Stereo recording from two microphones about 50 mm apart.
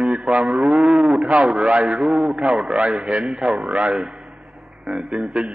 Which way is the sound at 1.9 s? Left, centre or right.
Centre.